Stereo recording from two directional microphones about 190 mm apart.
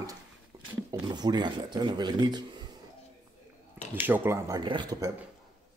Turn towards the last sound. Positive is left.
turn(degrees=-20)  # may be behind; listen again after turning